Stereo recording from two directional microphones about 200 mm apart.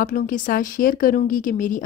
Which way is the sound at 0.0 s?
45° left (ahead or behind).